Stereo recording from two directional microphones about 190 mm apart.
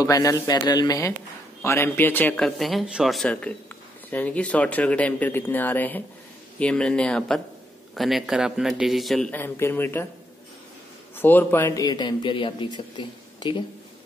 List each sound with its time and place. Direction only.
0.0 s a man's voice: 15° left (ahead or behind)
11.1 s speech: 10° left (ahead or behind)